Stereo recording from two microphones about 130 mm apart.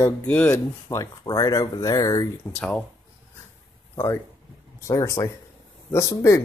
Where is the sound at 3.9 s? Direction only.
20° left (ahead or behind).